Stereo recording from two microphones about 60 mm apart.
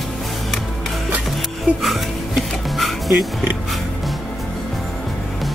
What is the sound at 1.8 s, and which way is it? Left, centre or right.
Music, centre.